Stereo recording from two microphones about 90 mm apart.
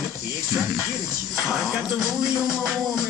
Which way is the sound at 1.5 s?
5° right (ahead or behind).